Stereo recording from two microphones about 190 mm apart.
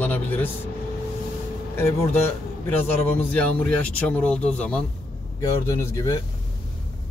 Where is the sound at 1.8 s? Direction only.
15° left (ahead or behind).